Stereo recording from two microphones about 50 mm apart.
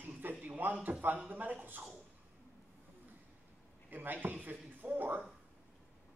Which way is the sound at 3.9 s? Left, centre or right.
Right.